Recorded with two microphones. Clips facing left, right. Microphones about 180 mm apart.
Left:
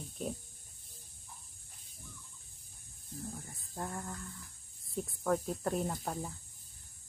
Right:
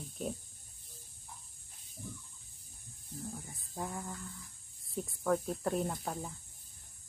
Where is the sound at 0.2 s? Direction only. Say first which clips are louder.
Even; 5° right (ahead or behind).